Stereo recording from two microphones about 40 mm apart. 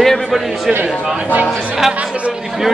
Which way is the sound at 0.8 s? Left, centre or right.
Centre.